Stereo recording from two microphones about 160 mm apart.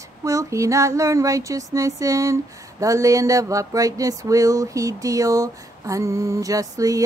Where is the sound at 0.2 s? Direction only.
20° right (ahead or behind).